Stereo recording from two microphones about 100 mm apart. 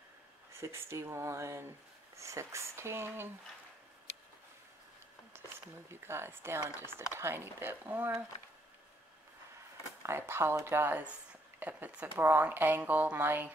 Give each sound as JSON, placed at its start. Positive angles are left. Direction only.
{"t": 0.5, "sound": "speech", "side_deg": -25}
{"t": 5.9, "sound": "speech", "side_deg": -25}
{"t": 10.0, "sound": "speech", "side_deg": -25}